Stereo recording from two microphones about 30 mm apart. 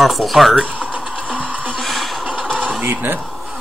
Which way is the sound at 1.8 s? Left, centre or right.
Centre.